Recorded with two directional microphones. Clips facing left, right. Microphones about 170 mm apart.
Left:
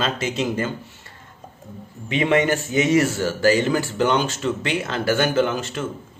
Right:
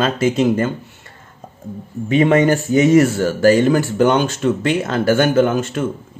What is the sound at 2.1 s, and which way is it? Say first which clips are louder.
A man's voice: right 6 dB; 45° right (ahead or behind).